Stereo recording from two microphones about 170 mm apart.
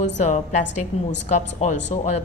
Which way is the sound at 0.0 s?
45° left (ahead or behind).